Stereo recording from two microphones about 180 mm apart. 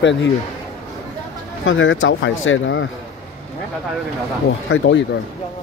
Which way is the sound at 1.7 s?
90° left.